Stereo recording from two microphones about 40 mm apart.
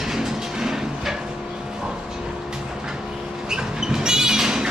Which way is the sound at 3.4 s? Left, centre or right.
Centre.